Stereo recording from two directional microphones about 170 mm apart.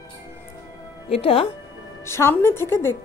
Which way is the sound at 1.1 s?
35° left (ahead or behind).